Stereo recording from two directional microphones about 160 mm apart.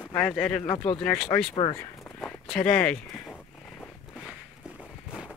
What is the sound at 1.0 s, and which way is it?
Speech, 10° left (ahead or behind).